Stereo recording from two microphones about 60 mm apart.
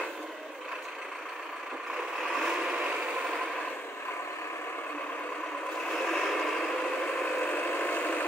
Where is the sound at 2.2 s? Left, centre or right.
Centre.